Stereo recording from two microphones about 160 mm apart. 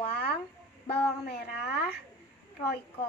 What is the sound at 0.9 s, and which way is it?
Speech, 85° left.